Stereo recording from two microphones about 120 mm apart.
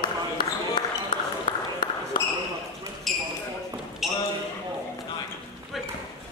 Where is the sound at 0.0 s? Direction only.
40° left (ahead or behind).